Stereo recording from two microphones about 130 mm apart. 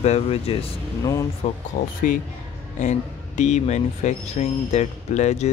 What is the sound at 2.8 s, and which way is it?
Speech, 65° left (ahead or behind).